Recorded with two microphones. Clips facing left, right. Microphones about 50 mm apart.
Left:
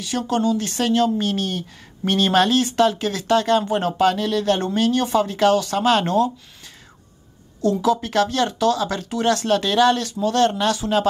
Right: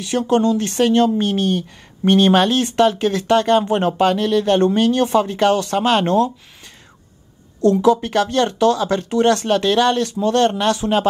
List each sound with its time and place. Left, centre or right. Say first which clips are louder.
0.1 s speech: right 6 dB; right
0.4 s speech: right 4 dB; centre
7.8 s speech: right 3 dB; right